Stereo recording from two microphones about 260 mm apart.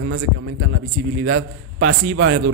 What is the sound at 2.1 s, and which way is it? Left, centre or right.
Speech, right.